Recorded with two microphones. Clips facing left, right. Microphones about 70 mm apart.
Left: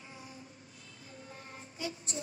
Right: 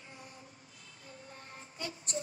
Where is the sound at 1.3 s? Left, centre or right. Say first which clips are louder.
Left 1 dB; right.